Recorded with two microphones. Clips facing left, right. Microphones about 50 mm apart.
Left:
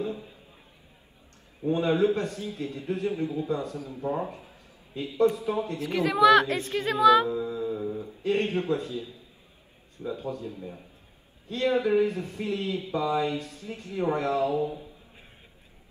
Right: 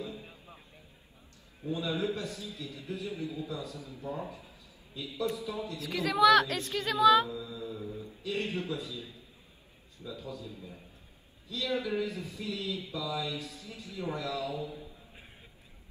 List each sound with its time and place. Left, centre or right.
0.0 s a sound: left
1.7 s a man's voice: left
8.2 s a man's voice: left